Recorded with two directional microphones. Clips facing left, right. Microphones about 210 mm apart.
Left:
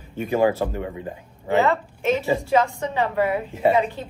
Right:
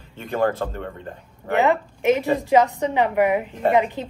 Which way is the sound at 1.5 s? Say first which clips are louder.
Right 1 dB; 15° right (ahead or behind).